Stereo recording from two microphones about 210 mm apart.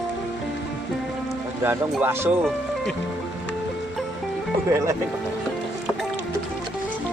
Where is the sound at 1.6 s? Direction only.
10° right (ahead or behind).